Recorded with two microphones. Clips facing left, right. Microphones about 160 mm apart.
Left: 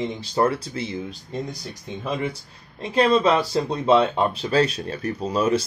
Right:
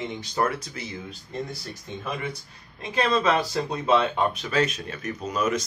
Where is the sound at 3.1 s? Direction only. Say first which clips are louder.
Left 4 dB; 30° left (ahead or behind).